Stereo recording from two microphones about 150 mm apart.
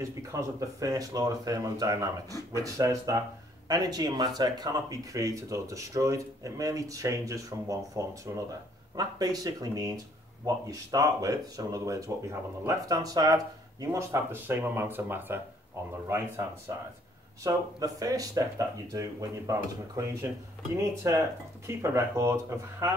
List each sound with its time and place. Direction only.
0.0 s speech: 20° right (ahead or behind)